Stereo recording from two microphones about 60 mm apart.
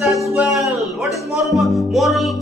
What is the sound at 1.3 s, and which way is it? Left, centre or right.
Music, centre.